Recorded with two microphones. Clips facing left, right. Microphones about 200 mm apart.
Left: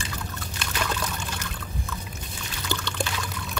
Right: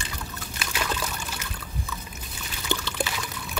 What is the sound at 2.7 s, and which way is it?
Pour, 20° right (ahead or behind).